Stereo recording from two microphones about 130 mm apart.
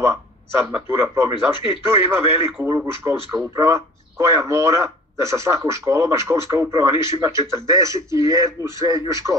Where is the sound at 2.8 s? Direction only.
20° right (ahead or behind).